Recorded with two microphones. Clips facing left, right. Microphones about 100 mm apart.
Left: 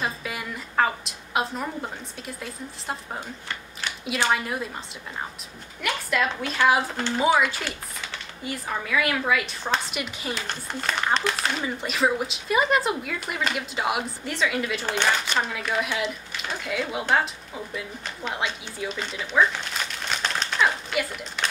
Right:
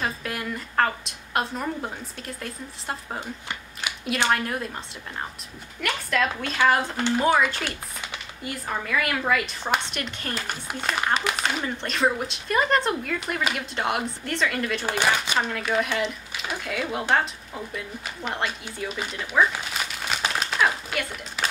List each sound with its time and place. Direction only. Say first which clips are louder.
0.0 s a woman's voice: right 1 dB; centre (ahead or behind)
3.8 s a sound: even; 15° right (ahead or behind)
4.3 s a woman's voice: even; centre (ahead or behind)
5.8 s a woman's voice: even; 5° left (ahead or behind)
10.4 s a woman's voice: even; 10° right (ahead or behind)